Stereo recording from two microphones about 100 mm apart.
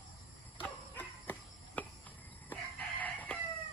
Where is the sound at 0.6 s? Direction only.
15° left (ahead or behind).